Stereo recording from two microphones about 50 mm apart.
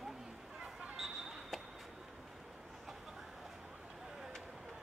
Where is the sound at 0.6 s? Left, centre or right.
Right.